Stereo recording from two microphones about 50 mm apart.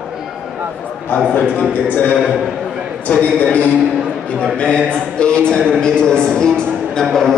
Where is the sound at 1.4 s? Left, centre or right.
Left.